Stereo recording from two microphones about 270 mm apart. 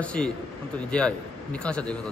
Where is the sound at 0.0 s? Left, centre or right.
Centre.